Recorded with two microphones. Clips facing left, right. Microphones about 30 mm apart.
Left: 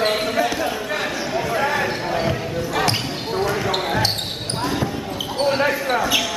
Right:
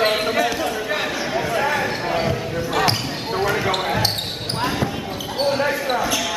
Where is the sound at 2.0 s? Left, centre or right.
Centre.